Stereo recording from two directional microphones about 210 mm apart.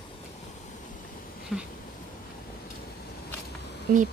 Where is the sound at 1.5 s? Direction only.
Centre (ahead or behind).